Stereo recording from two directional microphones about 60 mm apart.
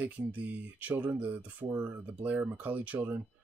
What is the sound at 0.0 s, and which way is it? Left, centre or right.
Speech, right.